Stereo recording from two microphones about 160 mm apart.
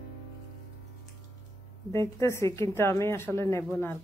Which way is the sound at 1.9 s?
15° left (ahead or behind).